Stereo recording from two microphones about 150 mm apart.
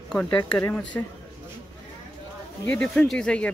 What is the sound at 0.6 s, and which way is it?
Speech, 10° left (ahead or behind).